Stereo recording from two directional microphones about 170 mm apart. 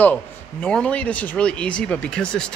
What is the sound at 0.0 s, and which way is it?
A man's voice, 10° left (ahead or behind).